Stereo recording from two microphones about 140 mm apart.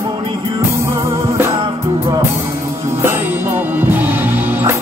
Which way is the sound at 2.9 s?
15° right (ahead or behind).